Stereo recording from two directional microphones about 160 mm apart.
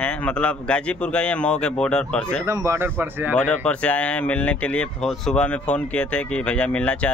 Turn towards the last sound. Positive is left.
turn(degrees=10)  # may be behind; listen again after turning